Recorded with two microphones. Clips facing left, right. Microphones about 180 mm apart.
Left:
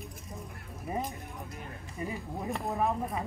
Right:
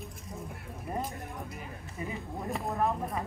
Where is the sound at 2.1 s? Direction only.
Centre (ahead or behind).